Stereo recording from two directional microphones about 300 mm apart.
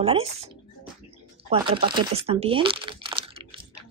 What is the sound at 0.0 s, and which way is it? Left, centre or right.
Speech, centre.